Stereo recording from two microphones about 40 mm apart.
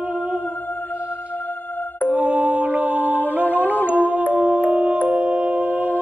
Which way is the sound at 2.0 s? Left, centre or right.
Right.